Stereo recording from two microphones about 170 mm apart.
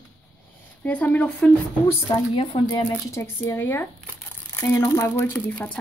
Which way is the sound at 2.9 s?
15° left (ahead or behind).